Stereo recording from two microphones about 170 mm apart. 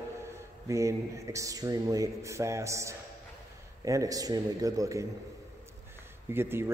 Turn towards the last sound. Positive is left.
turn(degrees=-15)  # may be behind; listen again after turning